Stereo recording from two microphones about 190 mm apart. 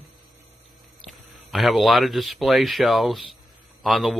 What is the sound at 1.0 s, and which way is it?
Speech, centre (ahead or behind).